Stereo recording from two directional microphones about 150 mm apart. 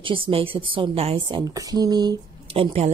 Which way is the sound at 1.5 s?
25° right (ahead or behind).